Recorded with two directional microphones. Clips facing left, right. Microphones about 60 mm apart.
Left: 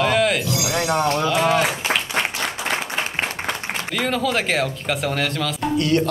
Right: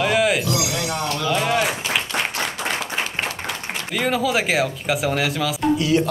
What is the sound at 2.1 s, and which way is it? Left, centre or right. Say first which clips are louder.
Applause: left 2 dB; left.